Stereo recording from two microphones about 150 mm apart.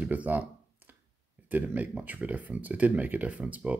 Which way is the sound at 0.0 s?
10° right (ahead or behind).